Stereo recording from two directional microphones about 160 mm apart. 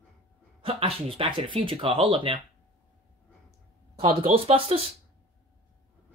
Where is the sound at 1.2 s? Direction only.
30° right (ahead or behind).